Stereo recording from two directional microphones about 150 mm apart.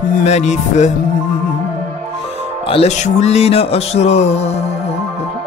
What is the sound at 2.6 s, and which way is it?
Music, 45° left (ahead or behind).